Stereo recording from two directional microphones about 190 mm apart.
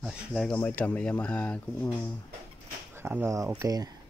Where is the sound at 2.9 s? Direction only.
10° right (ahead or behind).